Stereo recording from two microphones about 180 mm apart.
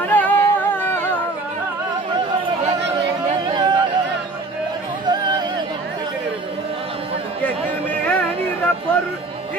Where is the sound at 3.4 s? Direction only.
25° right (ahead or behind).